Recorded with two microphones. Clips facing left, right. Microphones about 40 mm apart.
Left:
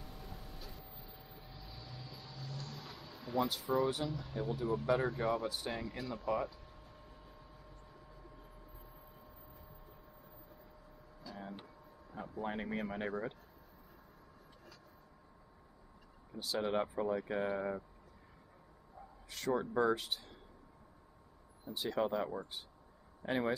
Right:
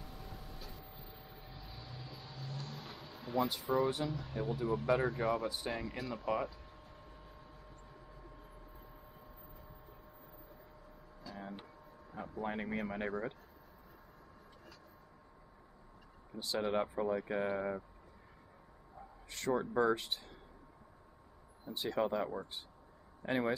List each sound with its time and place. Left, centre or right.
0.0 s vehicle: centre
0.8 s vehicle: centre
3.9 s speech: centre
6.5 s a sound: centre
7.9 s vehicle: centre
11.2 s a sound: centre
16.3 s speech: centre
19.3 s speech: centre
21.6 s speech: centre